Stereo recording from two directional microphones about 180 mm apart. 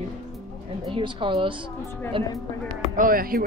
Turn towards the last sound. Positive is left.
turn(degrees=-55)  # may be behind; listen again after turning